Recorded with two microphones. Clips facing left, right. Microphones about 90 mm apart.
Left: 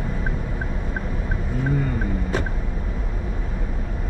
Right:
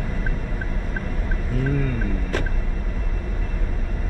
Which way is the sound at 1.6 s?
15° left (ahead or behind).